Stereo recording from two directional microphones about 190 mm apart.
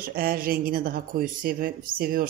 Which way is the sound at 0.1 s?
50° right (ahead or behind).